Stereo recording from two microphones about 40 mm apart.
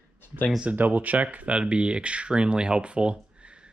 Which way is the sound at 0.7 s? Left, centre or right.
Right.